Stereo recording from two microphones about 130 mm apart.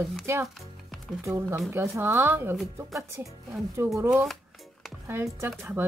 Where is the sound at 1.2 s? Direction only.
20° right (ahead or behind).